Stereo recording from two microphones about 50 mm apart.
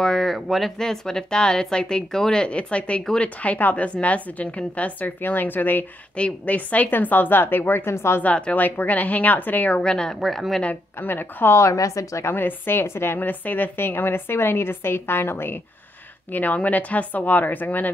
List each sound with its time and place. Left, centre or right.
0.0 s a woman's voice: centre; by 5.1 s left
5.2 s a woman's voice: left
6.1 s a woman's voice: left
7.8 s speech: left
8.2 s a woman's voice: left
8.5 s a woman's voice: left
9.8 s speech: centre
10.2 s speech: centre
11.0 s a woman's voice: left
11.5 s a woman's voice: left
12.3 s a woman's voice: left
16.3 s a woman's voice: left